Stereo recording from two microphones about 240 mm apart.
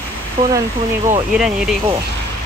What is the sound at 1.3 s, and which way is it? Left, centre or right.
Speech, centre.